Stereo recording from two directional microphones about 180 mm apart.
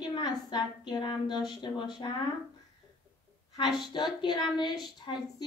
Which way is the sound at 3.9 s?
25° left (ahead or behind).